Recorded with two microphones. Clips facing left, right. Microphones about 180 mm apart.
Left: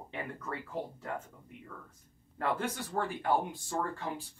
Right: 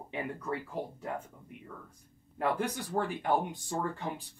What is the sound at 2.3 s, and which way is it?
Speech, 15° right (ahead or behind).